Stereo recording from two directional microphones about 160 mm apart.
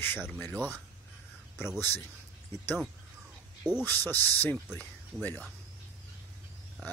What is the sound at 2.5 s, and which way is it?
Speech, 15° left (ahead or behind).